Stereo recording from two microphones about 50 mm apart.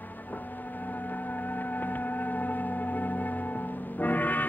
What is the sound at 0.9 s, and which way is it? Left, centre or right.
Music, left.